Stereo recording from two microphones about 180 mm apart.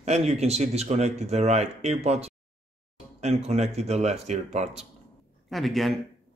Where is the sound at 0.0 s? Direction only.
40° right (ahead or behind).